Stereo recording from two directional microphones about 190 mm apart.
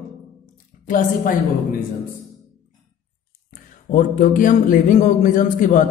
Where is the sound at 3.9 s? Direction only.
40° left (ahead or behind).